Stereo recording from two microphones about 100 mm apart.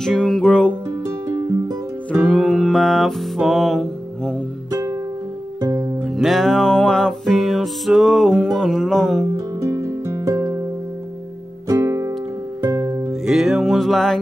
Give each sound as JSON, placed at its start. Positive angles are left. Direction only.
{"t": 0.0, "sound": "music", "side_deg": 5}
{"t": 2.2, "sound": "music", "side_deg": 5}
{"t": 5.6, "sound": "music", "side_deg": -35}
{"t": 6.0, "sound": "music", "side_deg": 0}
{"t": 9.6, "sound": "music", "side_deg": -30}
{"t": 11.6, "sound": "music", "side_deg": -35}
{"t": 13.2, "sound": "music", "side_deg": -5}